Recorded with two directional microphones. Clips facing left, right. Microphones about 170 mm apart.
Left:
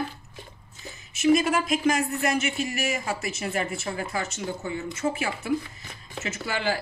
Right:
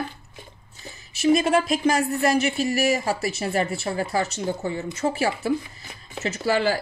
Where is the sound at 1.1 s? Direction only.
30° right (ahead or behind).